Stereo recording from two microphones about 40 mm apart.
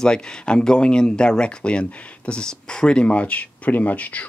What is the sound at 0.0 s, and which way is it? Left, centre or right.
Speech, left.